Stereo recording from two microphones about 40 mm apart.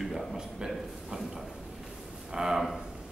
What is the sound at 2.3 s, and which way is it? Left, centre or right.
Speech, centre.